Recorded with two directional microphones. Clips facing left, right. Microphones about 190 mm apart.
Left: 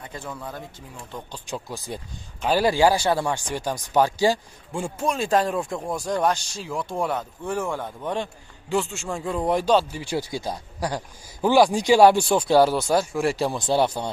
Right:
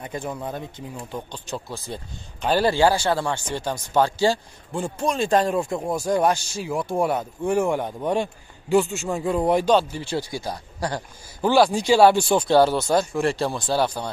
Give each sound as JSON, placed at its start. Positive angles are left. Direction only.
{"t": 0.0, "sound": "speech", "side_deg": -20}
{"t": 1.3, "sound": "speech", "side_deg": 10}
{"t": 4.7, "sound": "speech", "side_deg": 0}
{"t": 13.6, "sound": "speech", "side_deg": 20}